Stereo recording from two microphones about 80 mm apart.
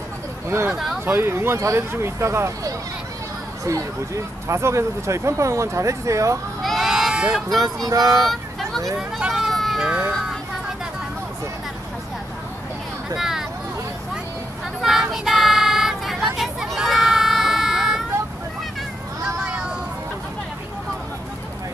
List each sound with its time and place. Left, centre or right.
1.0 s speech: right
6.6 s sheep: centre
7.5 s speech: right
8.3 s vehicle: centre
9.8 s speech: centre
13.1 s a sound: centre
14.8 s child singing: centre
19.2 s a sound: centre